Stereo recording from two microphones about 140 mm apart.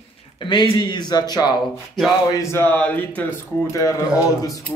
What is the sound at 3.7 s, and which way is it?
Speech, 25° left (ahead or behind).